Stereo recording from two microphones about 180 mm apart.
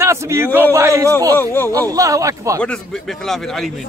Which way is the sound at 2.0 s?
20° right (ahead or behind).